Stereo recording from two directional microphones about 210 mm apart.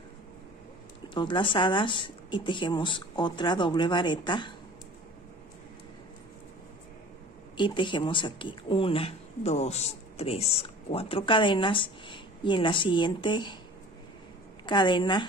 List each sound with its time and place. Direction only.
1.0 s speech: 20° left (ahead or behind)
7.5 s speech: 25° left (ahead or behind)
14.7 s speech: 20° left (ahead or behind)